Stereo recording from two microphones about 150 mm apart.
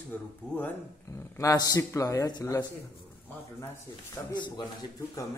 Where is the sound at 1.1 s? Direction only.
20° left (ahead or behind).